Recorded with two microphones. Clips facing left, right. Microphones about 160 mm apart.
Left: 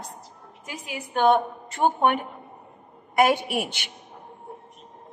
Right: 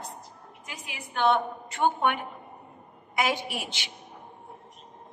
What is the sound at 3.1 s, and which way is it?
Speech, 55° left (ahead or behind).